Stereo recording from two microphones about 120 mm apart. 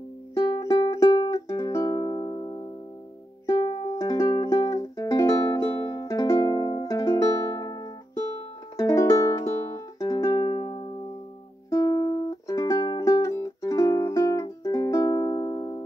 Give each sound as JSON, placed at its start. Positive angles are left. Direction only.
{"t": 0.5, "sound": "music", "side_deg": 35}
{"t": 5.8, "sound": "music", "side_deg": 45}
{"t": 6.0, "sound": "music", "side_deg": 25}
{"t": 11.7, "sound": "music", "side_deg": 30}